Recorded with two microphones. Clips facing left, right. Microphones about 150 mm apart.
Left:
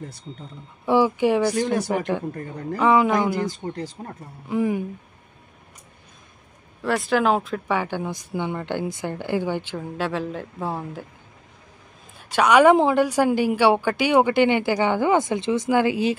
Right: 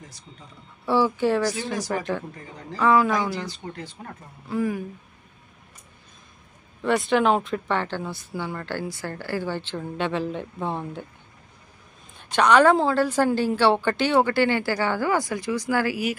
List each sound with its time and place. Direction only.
0.8 s speech: 15° left (ahead or behind)
2.3 s speech: 55° left (ahead or behind)
2.8 s a man's voice: 20° left (ahead or behind)
3.3 s speech: 45° left (ahead or behind)
4.1 s a man's voice: 20° left (ahead or behind)
6.8 s speech: 5° left (ahead or behind)
12.2 s speech: 5° left (ahead or behind); by 16.2 s 25° left (ahead or behind)